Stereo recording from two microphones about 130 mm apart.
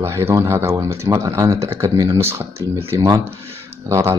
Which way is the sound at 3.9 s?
20° right (ahead or behind).